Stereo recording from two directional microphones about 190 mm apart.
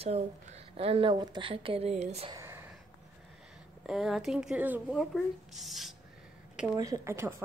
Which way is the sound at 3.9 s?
Centre (ahead or behind).